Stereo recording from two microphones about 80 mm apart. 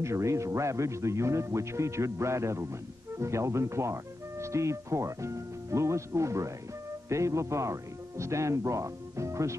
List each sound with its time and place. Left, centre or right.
0.0 s a man's voice: right